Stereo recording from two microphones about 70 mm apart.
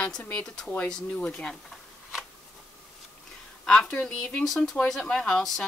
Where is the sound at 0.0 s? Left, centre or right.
Centre.